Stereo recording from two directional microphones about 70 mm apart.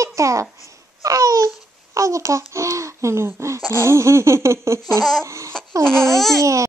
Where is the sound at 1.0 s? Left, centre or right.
Right.